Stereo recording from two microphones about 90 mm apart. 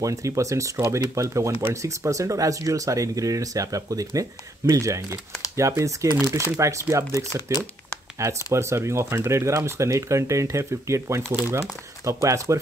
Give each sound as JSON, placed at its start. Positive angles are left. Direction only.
{"t": 0.0, "sound": "speech", "side_deg": -35}